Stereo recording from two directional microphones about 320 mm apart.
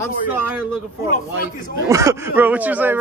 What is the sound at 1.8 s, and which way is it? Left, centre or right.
Speech, centre.